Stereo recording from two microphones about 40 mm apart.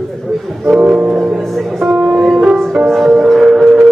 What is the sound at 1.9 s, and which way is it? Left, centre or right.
Music, centre.